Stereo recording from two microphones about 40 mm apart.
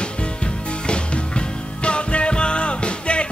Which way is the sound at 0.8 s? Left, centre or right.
Left.